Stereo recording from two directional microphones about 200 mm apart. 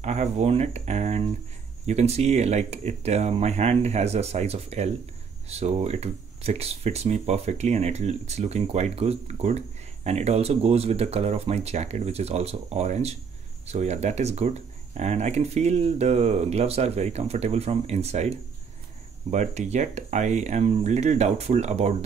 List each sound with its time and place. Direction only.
0.0 s speech: 35° right (ahead or behind)
19.3 s speech: 35° right (ahead or behind)